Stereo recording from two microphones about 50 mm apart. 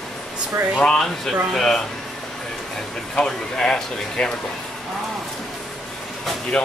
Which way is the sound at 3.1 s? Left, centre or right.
Centre.